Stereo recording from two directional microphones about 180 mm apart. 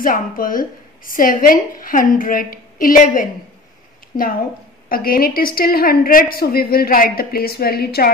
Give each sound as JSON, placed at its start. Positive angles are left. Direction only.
{"t": 0.0, "sound": "a woman's voice", "side_deg": 50}
{"t": 4.8, "sound": "a woman's voice", "side_deg": 55}